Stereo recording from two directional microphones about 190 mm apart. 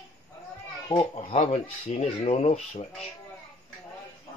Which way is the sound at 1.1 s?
30° left (ahead or behind).